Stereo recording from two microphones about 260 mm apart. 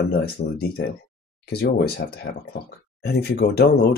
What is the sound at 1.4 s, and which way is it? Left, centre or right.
Speech, left.